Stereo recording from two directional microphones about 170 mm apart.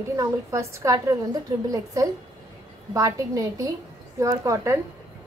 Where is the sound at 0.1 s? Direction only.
20° right (ahead or behind).